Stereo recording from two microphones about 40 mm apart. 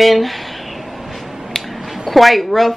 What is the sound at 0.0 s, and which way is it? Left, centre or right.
Speech, centre.